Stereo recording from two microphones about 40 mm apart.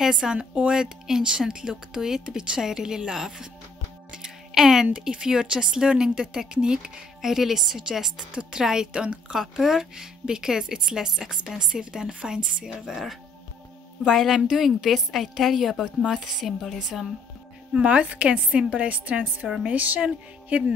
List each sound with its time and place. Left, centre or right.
0.0 s a woman's voice: centre
4.2 s a sound: centre
4.9 s a woman's voice: right
7.2 s speech: centre
10.2 s a woman's voice: centre
14.0 s a woman's voice: centre
17.7 s a woman's voice: right